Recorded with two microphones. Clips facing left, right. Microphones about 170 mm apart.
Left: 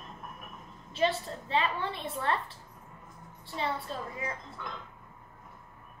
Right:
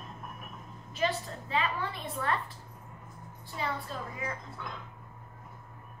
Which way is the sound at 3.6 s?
30° left (ahead or behind).